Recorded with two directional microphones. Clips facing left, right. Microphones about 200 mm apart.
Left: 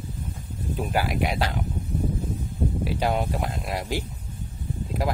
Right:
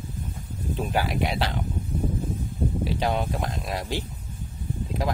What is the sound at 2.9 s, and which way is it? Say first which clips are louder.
Speech: left 2 dB; 10° left (ahead or behind).